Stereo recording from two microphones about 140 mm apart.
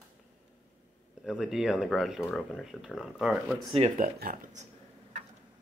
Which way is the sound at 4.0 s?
90° right.